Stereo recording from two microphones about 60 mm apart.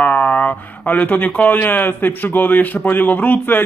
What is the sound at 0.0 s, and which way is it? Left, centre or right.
Speech, left.